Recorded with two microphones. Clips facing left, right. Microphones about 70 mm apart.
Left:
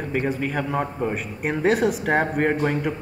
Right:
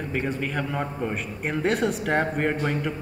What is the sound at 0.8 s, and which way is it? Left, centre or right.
Speech, centre.